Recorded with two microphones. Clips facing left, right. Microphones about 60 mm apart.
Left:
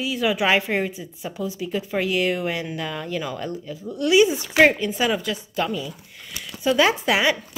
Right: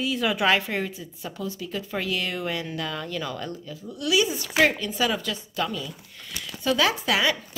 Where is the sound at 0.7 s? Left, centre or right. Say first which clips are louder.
Left 5 dB; centre.